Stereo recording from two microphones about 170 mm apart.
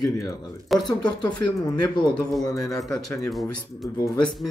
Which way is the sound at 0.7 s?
Centre (ahead or behind).